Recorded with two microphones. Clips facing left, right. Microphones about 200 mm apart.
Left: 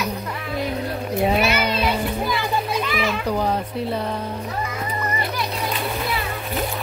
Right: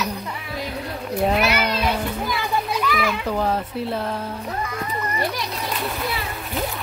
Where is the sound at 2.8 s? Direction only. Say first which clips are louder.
Right 1 dB; 25° left (ahead or behind).